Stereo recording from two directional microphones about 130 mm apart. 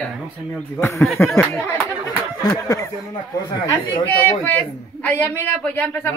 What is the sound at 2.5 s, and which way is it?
Speech, 30° left (ahead or behind).